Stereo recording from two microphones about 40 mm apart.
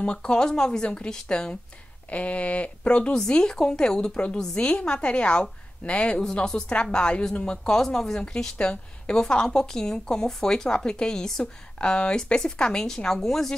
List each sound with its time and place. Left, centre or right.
0.0 s a woman's voice: left
2.0 s speech: left; by 4.2 s centre
4.6 s a woman's voice: left
7.7 s speech: centre
8.5 s speech: left; by 13.6 s centre